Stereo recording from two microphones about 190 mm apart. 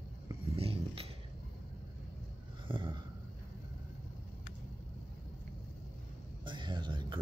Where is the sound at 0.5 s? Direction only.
30° right (ahead or behind).